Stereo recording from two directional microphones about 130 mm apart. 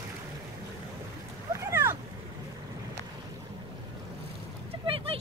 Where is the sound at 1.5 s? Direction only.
20° right (ahead or behind).